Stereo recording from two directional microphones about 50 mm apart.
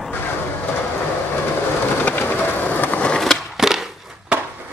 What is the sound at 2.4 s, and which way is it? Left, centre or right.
Skateboard, left.